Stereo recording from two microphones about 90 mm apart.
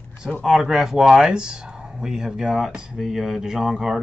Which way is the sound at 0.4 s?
Centre (ahead or behind).